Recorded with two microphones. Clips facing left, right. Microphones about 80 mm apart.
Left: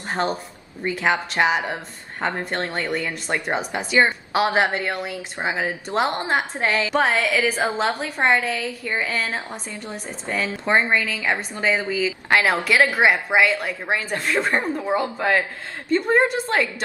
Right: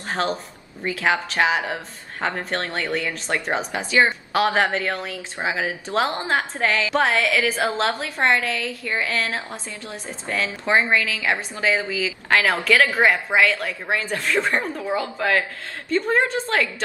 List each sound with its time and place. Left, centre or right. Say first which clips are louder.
0.1 s a woman's voice: even; centre
1.4 s a woman's voice: left 1 dB; centre
2.7 s speech: even; centre
3.0 s a woman's voice: even; centre
7.0 s a woman's voice: even; centre
12.3 s a woman's voice: right 1 dB; centre